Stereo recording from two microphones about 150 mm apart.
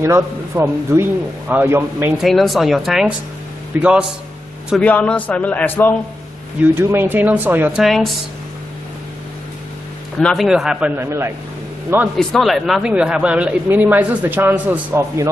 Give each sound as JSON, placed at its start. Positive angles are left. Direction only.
{"t": 0.0, "sound": "speech", "side_deg": -15}
{"t": 2.1, "sound": "speech", "side_deg": 0}
{"t": 4.8, "sound": "a man's voice", "side_deg": 10}
{"t": 6.6, "sound": "speech", "side_deg": -15}
{"t": 7.8, "sound": "speech", "side_deg": 0}
{"t": 10.1, "sound": "speech", "side_deg": 5}
{"t": 11.0, "sound": "speech", "side_deg": -15}
{"t": 12.2, "sound": "speech", "side_deg": 5}